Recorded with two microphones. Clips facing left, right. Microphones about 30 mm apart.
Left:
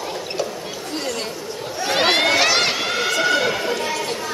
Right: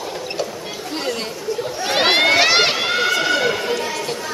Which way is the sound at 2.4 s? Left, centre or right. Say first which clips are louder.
Right 3 dB; right.